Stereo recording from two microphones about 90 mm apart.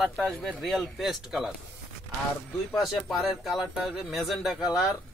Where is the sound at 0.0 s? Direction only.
5° left (ahead or behind).